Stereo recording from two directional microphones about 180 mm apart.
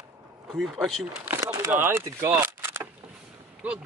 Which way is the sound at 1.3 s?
15° right (ahead or behind).